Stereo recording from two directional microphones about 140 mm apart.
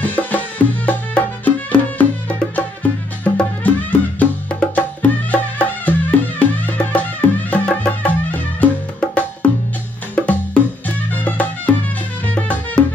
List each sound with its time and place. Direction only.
0.0 s music: 10° left (ahead or behind)
10.1 s music: 10° left (ahead or behind)